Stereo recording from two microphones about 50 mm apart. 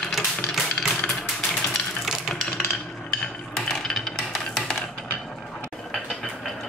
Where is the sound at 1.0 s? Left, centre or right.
Centre.